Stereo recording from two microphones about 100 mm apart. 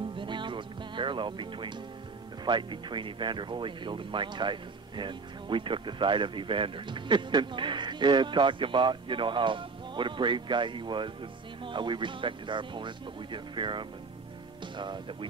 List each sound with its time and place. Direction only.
0.2 s music: 55° right (ahead or behind)
2.4 s speech: 50° right (ahead or behind)